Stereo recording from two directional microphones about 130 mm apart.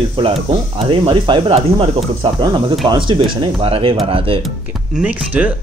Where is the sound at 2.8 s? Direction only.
40° right (ahead or behind).